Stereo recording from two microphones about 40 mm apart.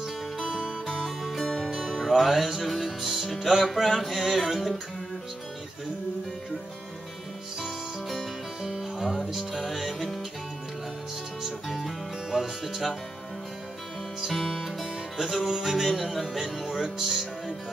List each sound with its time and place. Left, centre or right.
0.0 s music: centre
0.8 s music: centre
1.8 s music: centre
7.6 s music: centre
11.4 s music: centre
14.2 s music: centre
16.6 s speech: centre